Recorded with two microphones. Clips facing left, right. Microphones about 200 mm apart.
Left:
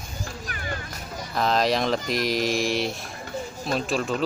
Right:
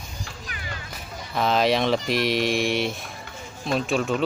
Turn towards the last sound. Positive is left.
turn(degrees=0)  # may be behind; listen again after turning